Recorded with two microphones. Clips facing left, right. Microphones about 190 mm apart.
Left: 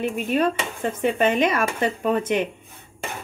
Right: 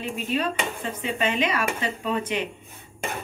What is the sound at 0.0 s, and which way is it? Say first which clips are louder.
Dishes: left 5 dB; 50° left (ahead or behind).